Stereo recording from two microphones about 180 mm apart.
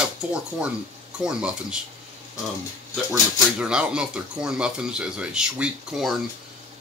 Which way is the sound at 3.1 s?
5° right (ahead or behind).